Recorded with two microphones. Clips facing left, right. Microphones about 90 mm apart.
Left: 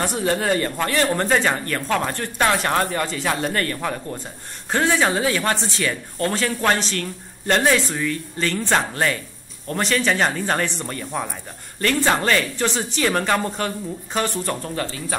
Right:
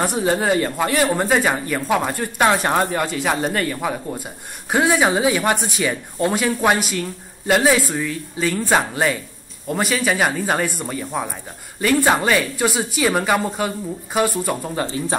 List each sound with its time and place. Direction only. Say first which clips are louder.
0.2 s speech: right 2 dB; 10° right (ahead or behind)
14.9 s speech: right 6 dB; 25° right (ahead or behind)